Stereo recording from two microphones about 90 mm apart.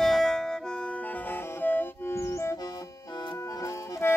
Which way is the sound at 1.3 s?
20° left (ahead or behind).